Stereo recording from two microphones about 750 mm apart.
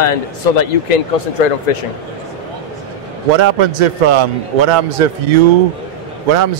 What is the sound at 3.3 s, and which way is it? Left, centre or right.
Speech, right.